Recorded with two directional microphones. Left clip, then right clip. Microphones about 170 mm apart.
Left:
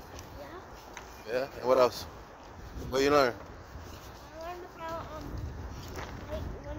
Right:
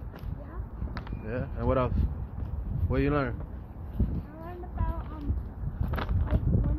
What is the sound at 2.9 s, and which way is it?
Speech, 55° left (ahead or behind).